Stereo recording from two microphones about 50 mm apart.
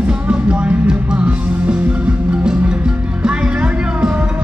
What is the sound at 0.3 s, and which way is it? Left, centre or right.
Music, right.